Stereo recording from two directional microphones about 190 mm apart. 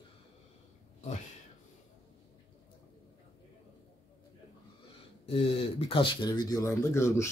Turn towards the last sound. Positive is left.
turn(degrees=15)  # may be behind; listen again after turning